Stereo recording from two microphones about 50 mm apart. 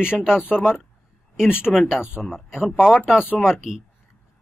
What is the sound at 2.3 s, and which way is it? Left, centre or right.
Speech, centre.